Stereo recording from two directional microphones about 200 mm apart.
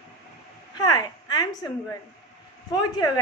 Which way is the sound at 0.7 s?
20° left (ahead or behind).